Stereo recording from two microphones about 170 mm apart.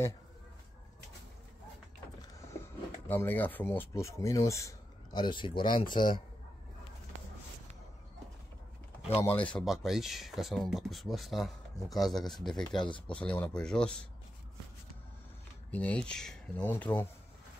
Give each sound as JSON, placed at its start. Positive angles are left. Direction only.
{"t": 3.1, "sound": "speech", "side_deg": 10}
{"t": 9.2, "sound": "speech", "side_deg": 10}
{"t": 12.7, "sound": "speech", "side_deg": 30}
{"t": 13.0, "sound": "speech", "side_deg": 5}
{"t": 15.7, "sound": "speech", "side_deg": 10}